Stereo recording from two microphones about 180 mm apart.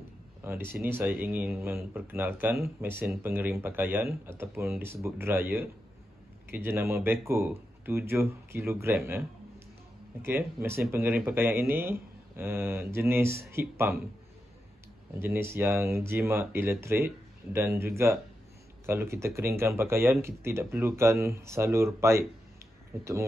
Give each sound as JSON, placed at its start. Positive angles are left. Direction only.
{"t": 0.4, "sound": "speech", "side_deg": -10}
{"t": 10.2, "sound": "speech", "side_deg": -15}
{"t": 15.1, "sound": "speech", "side_deg": -15}